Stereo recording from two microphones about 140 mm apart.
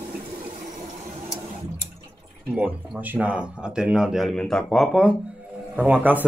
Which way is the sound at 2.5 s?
10° right (ahead or behind).